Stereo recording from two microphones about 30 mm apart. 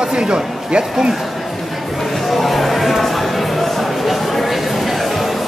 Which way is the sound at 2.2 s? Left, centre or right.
Centre.